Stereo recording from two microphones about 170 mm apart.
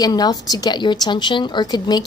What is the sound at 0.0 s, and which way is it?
A woman's voice, 25° left (ahead or behind).